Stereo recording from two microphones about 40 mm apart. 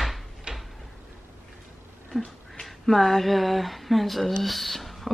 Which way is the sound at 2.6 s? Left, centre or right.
Centre.